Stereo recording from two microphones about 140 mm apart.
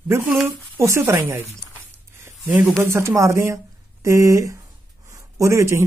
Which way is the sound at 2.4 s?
5° right (ahead or behind).